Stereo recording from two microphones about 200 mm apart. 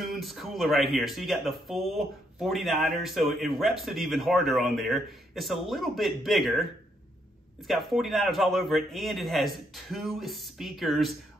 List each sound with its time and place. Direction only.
0.0 s speech: centre (ahead or behind)